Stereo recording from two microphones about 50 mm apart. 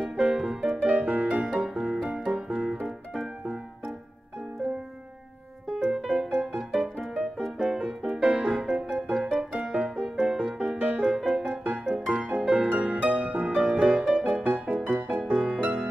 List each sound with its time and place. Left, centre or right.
0.0 s music: centre
0.8 s music: right
1.3 s music: centre
5.7 s music: centre
12.1 s music: right
13.5 s music: centre
14.4 s music: right